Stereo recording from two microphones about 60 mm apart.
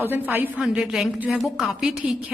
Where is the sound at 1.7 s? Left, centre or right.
Centre.